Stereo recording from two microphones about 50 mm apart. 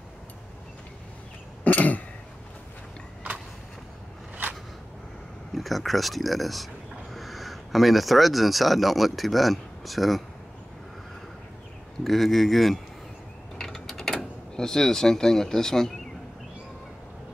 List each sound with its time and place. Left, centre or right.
1.6 s throat clearing: left
5.5 s speech: centre
12.0 s speech: centre
13.6 s a sound: centre